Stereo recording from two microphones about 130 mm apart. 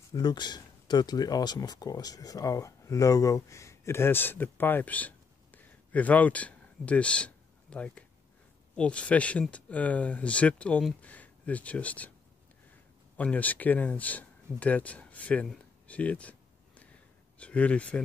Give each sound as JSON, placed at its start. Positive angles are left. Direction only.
{"t": 0.1, "sound": "speech", "side_deg": 35}
{"t": 13.2, "sound": "speech", "side_deg": 10}
{"t": 15.4, "sound": "a sound", "side_deg": 5}
{"t": 17.4, "sound": "speech", "side_deg": 10}